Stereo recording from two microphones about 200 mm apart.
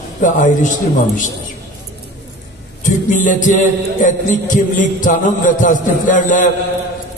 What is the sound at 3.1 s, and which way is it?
Music, 40° left (ahead or behind).